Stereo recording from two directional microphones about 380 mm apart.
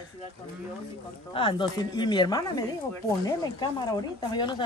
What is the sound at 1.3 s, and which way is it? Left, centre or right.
Speech, centre.